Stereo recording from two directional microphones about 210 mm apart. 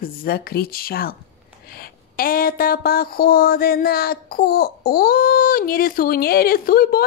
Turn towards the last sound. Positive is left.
turn(degrees=45)  # may be behind; listen again after turning